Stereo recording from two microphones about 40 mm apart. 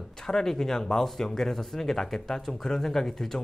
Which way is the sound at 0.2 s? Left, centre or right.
Centre.